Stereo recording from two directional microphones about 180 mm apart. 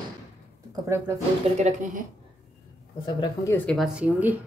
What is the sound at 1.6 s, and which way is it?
Speech, 40° right (ahead or behind).